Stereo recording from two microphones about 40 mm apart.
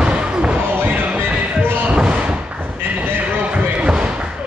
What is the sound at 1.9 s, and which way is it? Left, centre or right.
Slam, right.